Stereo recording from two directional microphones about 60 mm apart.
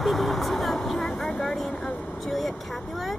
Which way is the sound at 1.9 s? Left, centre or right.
Centre.